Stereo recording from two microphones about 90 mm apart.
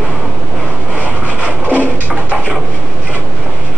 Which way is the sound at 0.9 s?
15° right (ahead or behind).